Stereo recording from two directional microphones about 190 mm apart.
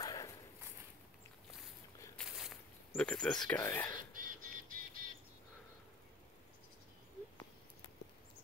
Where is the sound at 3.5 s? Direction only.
10° left (ahead or behind).